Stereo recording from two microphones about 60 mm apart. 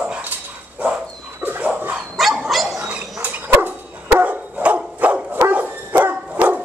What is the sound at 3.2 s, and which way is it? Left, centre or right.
Dog, right.